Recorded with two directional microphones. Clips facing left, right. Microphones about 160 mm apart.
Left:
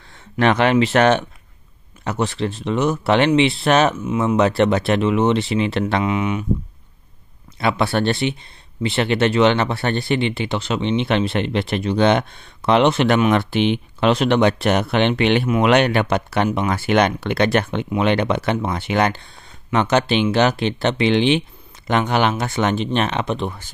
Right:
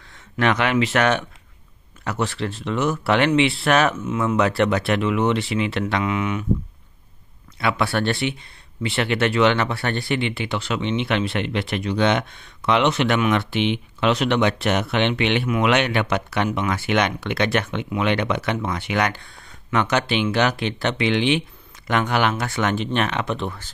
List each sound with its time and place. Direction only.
0.1 s speech: 30° left (ahead or behind)
7.5 s speech: 25° left (ahead or behind)